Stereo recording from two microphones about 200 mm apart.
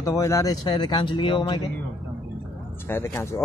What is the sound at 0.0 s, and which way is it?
Speech, 15° left (ahead or behind).